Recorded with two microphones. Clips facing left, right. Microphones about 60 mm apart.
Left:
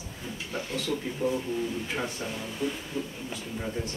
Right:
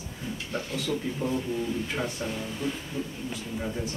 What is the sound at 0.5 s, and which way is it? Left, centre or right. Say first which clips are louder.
Speech: right 1 dB; centre.